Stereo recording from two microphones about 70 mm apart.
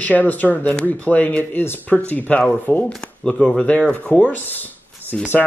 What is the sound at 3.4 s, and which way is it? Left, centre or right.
Speech, left.